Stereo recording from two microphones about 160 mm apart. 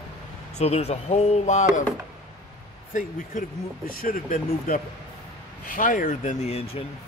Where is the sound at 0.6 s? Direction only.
40° left (ahead or behind).